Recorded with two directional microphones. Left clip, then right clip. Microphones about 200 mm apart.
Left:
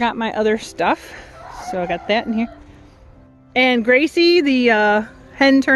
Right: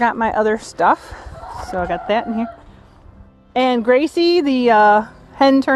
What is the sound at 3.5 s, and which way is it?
Speech, centre (ahead or behind).